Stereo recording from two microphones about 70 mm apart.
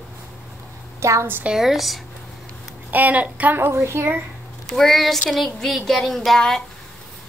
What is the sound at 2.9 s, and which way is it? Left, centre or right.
Speech, right.